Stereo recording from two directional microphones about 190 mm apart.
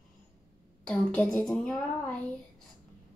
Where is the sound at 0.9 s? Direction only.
5° left (ahead or behind).